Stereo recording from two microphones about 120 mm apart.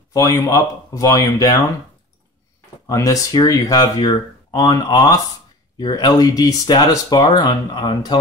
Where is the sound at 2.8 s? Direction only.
30° left (ahead or behind).